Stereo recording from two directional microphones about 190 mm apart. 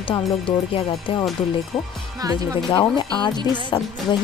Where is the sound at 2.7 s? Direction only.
25° left (ahead or behind).